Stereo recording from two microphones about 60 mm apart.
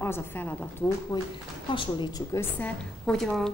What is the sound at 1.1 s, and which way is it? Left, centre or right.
A woman's voice, left.